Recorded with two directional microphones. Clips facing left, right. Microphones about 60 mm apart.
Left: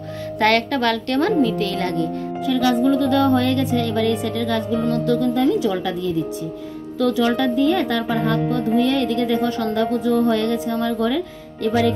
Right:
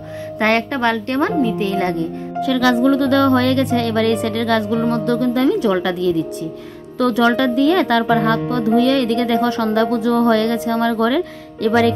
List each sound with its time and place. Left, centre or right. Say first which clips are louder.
0.4 s a woman's voice: right 1 dB; right
2.4 s speech: right 3 dB; right
4.8 s music: right 2 dB; right
5.3 s speech: right 3 dB; right
7.0 s speech: right 3 dB; right